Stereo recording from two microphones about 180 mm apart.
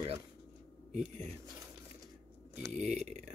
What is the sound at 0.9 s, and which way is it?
Speech, 40° right (ahead or behind).